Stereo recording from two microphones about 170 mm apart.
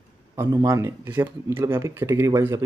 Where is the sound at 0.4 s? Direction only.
20° right (ahead or behind).